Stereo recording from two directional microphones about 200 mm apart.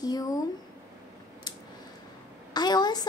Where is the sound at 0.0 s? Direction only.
20° left (ahead or behind).